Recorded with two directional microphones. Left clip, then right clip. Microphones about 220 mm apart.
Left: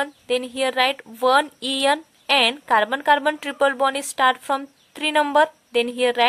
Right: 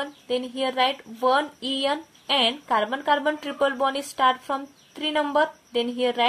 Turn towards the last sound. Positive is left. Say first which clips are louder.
# left 4 dB
turn(degrees=35)  # may be behind; listen again after turning